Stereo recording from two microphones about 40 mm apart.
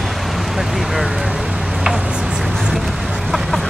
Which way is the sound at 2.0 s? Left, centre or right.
Centre.